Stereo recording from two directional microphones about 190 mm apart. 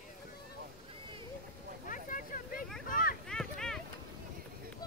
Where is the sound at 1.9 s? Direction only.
45° left (ahead or behind).